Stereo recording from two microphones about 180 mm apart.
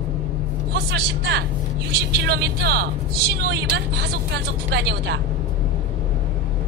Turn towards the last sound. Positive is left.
turn(degrees=-70)  # may be behind; listen again after turning